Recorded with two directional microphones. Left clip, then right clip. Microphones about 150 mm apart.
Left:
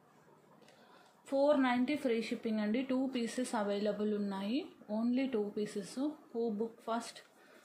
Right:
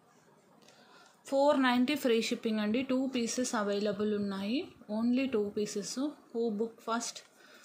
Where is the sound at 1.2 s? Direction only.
40° right (ahead or behind).